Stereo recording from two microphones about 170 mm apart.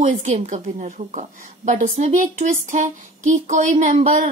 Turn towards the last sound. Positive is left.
turn(degrees=-40)  # may be behind; listen again after turning